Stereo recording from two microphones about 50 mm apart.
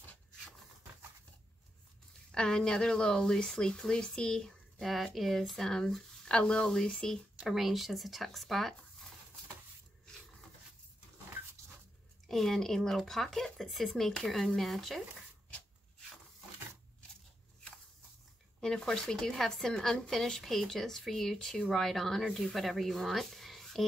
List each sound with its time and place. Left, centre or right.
2.3 s speech: centre
7.3 s speech: centre
12.3 s speech: centre
18.6 s speech: centre